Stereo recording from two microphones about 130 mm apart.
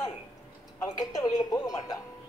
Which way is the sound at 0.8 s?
25° left (ahead or behind).